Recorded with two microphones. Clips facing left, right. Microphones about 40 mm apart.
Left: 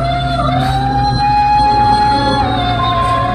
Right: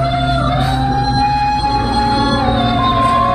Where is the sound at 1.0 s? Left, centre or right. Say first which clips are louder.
Left 4 dB; centre.